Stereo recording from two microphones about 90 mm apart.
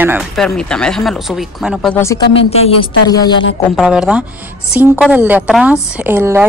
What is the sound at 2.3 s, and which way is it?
Speech, 80° left.